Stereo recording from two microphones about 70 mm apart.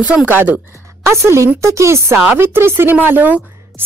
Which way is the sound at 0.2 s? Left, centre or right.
Right.